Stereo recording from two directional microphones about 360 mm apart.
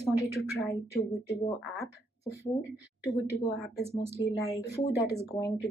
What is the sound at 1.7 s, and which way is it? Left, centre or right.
Speech, centre.